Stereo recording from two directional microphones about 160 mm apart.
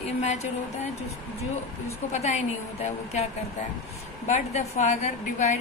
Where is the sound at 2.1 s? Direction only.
45° left (ahead or behind).